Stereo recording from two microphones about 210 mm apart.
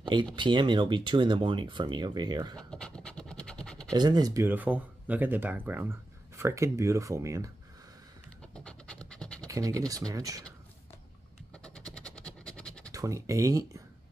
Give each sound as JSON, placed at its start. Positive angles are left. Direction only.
{"t": 0.0, "sound": "speech", "side_deg": -20}
{"t": 2.7, "sound": "scratch", "side_deg": 5}
{"t": 3.9, "sound": "speech", "side_deg": -20}
{"t": 8.4, "sound": "scratch", "side_deg": 5}
{"t": 9.5, "sound": "speech", "side_deg": -15}
{"t": 11.5, "sound": "scratch", "side_deg": 5}
{"t": 12.9, "sound": "speech", "side_deg": -15}